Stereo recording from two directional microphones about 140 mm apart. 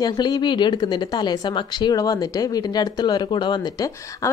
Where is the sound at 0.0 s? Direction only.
30° left (ahead or behind).